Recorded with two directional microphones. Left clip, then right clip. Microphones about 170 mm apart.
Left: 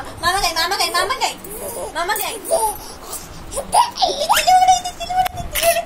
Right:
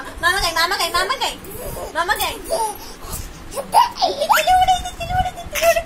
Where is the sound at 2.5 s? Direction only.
15° right (ahead or behind).